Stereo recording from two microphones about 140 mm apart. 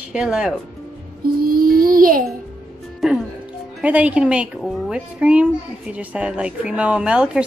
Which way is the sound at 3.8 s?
10° right (ahead or behind).